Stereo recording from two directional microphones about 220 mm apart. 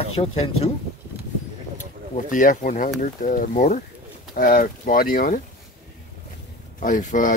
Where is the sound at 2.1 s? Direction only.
35° left (ahead or behind).